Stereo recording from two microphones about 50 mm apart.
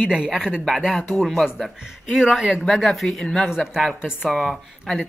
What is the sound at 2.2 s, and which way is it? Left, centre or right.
Speech, centre.